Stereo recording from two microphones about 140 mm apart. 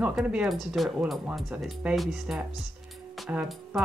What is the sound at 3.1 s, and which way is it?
Music, 5° right (ahead or behind).